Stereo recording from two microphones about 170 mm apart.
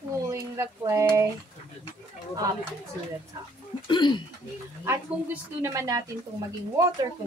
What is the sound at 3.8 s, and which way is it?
Speech, 25° left (ahead or behind).